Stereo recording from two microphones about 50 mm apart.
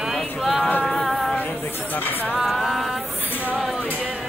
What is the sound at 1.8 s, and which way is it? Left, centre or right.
Speech, left.